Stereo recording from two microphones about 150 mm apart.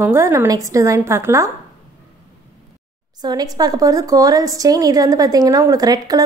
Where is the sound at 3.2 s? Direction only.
25° right (ahead or behind).